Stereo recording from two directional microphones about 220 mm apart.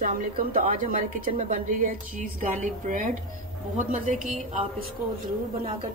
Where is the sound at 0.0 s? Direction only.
40° right (ahead or behind).